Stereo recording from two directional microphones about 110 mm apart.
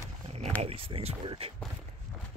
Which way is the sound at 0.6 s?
60° right (ahead or behind).